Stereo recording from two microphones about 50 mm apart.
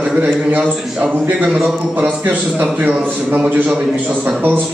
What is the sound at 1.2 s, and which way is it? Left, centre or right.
A man's voice, right.